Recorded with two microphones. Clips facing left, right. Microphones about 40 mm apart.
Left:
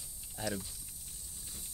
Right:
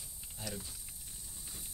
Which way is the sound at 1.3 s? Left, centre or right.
Centre.